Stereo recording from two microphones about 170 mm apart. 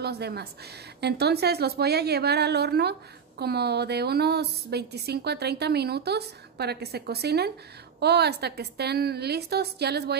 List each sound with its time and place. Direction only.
0.0 s a woman's voice: 70° right (ahead or behind)